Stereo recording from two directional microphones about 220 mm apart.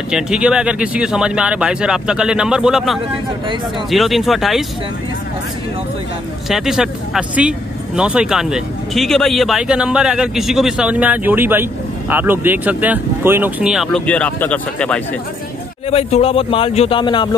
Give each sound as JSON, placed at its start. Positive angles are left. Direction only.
{"t": 0.1, "sound": "speech", "side_deg": -5}
{"t": 6.5, "sound": "speech", "side_deg": 0}
{"t": 15.9, "sound": "a man's voice", "side_deg": 25}